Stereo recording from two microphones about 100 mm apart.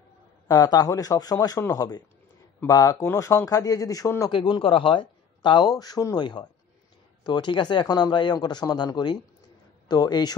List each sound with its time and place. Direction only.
0.5 s speech: 40° left (ahead or behind)
3.4 s speech: 40° left (ahead or behind)
4.3 s speech: 60° left (ahead or behind); by 10.3 s 40° left (ahead or behind)